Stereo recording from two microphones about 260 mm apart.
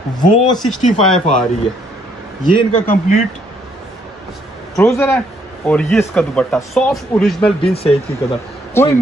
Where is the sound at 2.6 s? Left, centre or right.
Left.